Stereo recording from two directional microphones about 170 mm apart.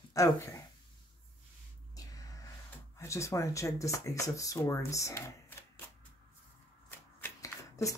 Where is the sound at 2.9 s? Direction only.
15° left (ahead or behind).